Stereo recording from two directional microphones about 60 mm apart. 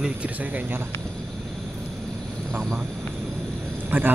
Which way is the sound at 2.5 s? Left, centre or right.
Right.